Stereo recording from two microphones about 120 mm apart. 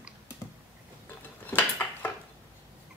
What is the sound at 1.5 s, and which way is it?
Dishes, 15° left (ahead or behind).